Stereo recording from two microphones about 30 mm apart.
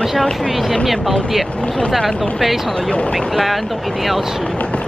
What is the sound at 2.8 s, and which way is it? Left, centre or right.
Speech, left.